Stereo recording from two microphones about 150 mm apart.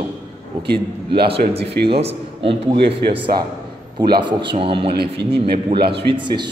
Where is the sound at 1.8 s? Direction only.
40° right (ahead or behind).